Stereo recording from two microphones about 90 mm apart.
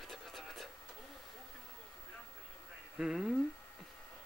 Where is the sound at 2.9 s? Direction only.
5° right (ahead or behind).